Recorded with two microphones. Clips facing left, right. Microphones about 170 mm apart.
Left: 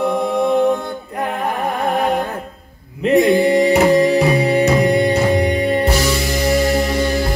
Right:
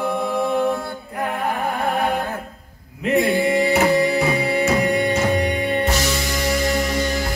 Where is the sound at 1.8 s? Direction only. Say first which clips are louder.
Left 5 dB; 35° left (ahead or behind).